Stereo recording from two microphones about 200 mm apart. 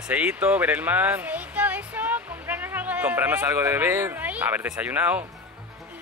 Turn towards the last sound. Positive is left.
turn(degrees=-5)  # may be behind; listen again after turning